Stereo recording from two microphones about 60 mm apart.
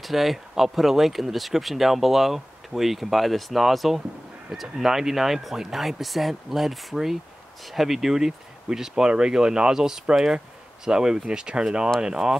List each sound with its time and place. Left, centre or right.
0.0 s speech: centre